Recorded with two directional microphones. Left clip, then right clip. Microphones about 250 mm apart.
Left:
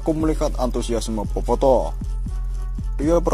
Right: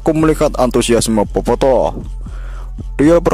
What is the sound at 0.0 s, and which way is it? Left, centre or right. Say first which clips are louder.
Speech: right 9 dB; right.